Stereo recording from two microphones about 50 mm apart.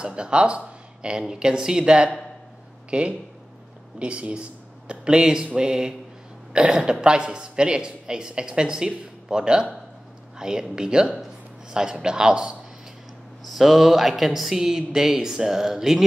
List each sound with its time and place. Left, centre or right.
0.0 s speech: centre
13.5 s speech: centre